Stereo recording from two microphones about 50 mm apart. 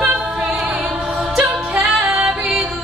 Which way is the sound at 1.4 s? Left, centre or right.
Right.